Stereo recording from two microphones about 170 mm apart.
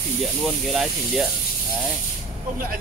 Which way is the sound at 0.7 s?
Centre (ahead or behind).